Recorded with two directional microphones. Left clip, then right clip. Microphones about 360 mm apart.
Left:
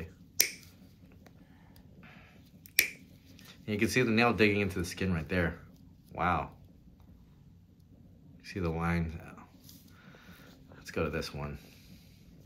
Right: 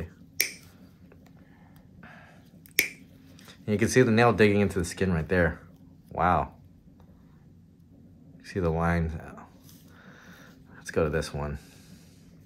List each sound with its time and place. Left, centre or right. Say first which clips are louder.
2.0 s tick-tock: right 6 dB; right
3.3 s speech: right 5 dB; right
8.5 s speech: right 7 dB; right
10.0 s a sound: right 5 dB; right